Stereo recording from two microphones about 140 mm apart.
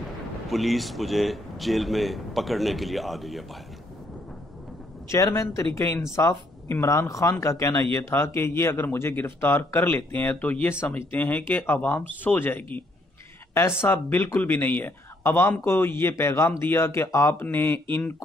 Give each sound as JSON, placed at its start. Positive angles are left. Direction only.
{"t": 0.5, "sound": "speech", "side_deg": 0}
{"t": 5.1, "sound": "speech", "side_deg": 20}